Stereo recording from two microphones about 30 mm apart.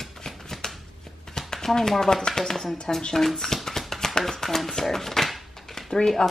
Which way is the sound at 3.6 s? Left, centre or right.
Centre.